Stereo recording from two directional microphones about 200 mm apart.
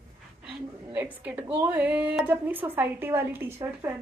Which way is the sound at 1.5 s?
10° right (ahead or behind).